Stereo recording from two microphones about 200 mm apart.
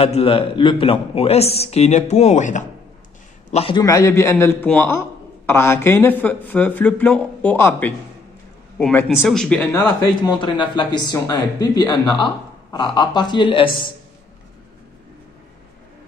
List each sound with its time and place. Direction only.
0.0 s speech: 30° left (ahead or behind)
3.5 s a man's voice: 25° left (ahead or behind); by 10.3 s 10° left (ahead or behind)
10.4 s speech: 25° left (ahead or behind)